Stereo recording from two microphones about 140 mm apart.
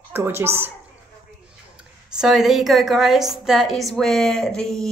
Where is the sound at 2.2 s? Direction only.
5° right (ahead or behind).